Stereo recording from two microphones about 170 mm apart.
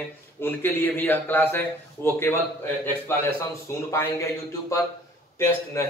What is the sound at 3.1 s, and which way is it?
A man's voice, 15° left (ahead or behind).